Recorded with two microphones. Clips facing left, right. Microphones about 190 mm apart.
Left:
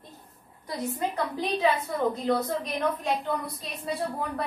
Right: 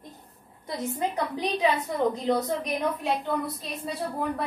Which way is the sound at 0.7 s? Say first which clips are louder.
Right 1 dB; 20° right (ahead or behind).